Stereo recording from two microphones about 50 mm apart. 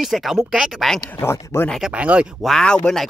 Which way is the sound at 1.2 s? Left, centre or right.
Left.